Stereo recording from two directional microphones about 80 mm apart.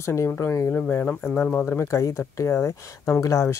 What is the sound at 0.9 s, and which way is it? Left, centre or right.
Speech, left.